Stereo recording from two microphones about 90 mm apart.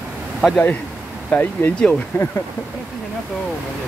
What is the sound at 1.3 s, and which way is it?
Speech, 20° left (ahead or behind).